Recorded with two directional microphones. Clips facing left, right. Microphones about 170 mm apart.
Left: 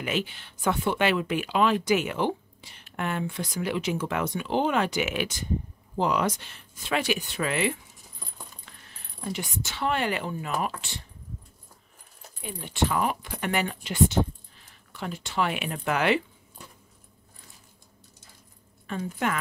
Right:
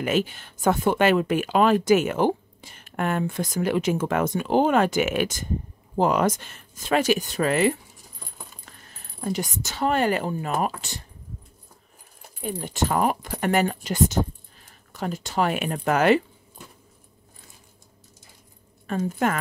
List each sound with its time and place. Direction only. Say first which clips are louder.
0.0 s speech: right 6 dB; 45° right (ahead or behind)
9.2 s speech: right 5 dB; 40° right (ahead or behind)
12.4 s speech: right 2 dB; 40° right (ahead or behind)
18.9 s speech: right 5 dB; 45° right (ahead or behind)